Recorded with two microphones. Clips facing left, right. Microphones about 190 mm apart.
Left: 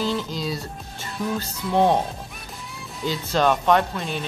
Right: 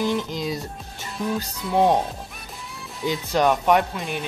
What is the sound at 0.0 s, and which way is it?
Speech, 15° right (ahead or behind).